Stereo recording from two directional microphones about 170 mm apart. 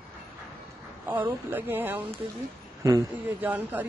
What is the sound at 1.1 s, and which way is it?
Speech, 10° right (ahead or behind).